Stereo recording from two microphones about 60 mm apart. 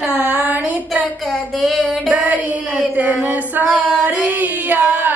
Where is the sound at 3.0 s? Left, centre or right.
Right.